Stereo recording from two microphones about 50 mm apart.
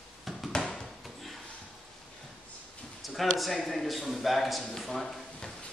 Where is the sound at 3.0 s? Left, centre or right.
Centre.